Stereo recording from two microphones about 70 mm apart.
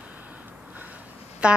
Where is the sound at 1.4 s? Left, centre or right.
Centre.